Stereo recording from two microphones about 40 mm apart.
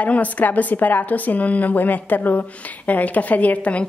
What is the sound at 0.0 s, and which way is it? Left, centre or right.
A woman's voice, left.